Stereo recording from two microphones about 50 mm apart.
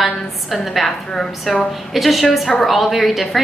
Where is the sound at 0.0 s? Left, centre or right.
Centre.